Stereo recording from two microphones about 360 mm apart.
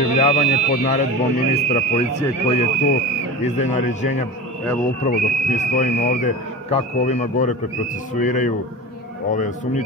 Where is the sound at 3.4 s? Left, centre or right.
Centre.